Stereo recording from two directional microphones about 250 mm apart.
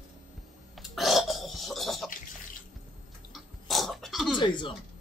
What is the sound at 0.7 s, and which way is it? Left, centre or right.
Burping, centre.